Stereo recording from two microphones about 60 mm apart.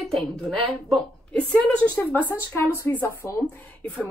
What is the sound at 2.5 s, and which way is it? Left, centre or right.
Speech, left.